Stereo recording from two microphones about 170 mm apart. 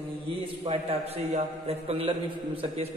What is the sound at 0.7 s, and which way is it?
A man's voice, 35° right (ahead or behind).